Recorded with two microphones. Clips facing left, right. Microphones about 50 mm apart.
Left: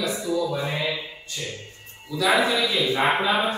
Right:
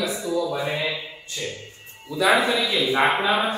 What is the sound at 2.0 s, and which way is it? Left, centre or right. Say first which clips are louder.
Speech: right 2 dB; centre.